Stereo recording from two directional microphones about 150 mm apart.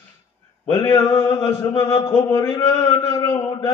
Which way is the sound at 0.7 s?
15° left (ahead or behind).